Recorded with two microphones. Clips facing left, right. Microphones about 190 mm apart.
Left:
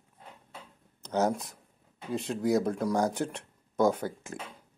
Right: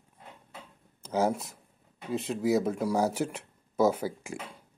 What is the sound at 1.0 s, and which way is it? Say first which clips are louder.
Speech: even; 5° right (ahead or behind).